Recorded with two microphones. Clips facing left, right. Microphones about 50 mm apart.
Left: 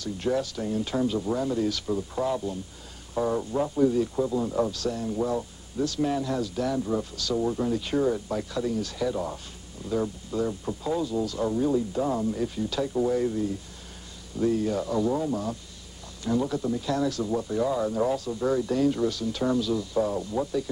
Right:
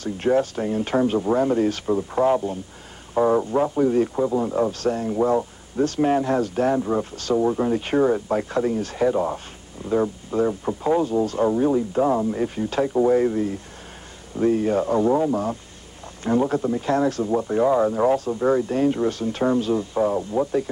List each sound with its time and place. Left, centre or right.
0.0 s speech: right